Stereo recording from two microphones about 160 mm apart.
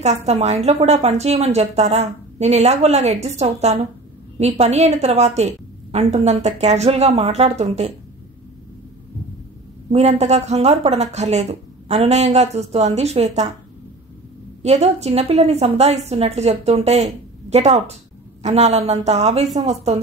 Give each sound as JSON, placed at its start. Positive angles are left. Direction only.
{"t": 0.0, "sound": "a woman's voice", "side_deg": -45}
{"t": 9.8, "sound": "a woman's voice", "side_deg": -40}
{"t": 14.6, "sound": "a woman's voice", "side_deg": -45}